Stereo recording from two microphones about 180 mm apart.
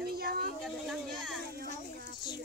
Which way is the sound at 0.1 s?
60° right (ahead or behind).